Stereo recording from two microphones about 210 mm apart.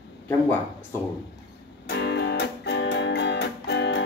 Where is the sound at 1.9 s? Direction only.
55° left (ahead or behind).